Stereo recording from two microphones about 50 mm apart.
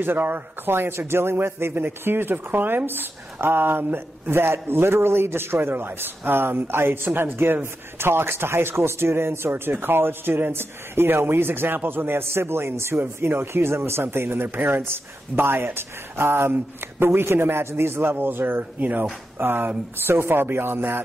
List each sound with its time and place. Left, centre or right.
0.0 s speech: right